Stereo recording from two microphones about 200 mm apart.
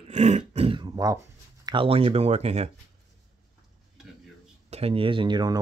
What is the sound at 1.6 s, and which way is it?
Speech, 25° right (ahead or behind).